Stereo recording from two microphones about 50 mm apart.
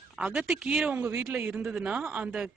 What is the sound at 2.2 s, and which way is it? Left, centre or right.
Speech, centre.